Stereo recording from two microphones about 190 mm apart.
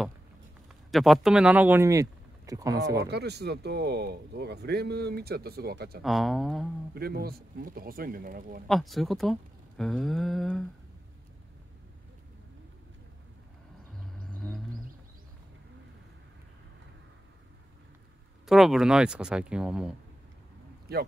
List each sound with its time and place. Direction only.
0.9 s speech: centre (ahead or behind); by 2.8 s 20° right (ahead or behind)
3.1 s speech: 60° right (ahead or behind)
6.0 s speech: centre (ahead or behind)
6.9 s speech: 55° right (ahead or behind)
8.6 s speech: centre (ahead or behind)
14.4 s roaring cats: 10° left (ahead or behind)
18.4 s speech: centre (ahead or behind)
20.9 s speech: 55° right (ahead or behind)